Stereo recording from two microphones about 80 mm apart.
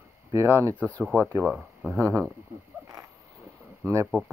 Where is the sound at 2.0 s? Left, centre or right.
Centre.